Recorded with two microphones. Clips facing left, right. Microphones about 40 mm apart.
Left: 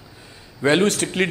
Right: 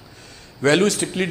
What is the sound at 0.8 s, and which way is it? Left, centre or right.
Speech, left.